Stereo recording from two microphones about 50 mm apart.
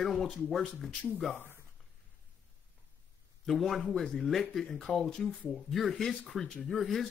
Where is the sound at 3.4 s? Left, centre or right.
Centre.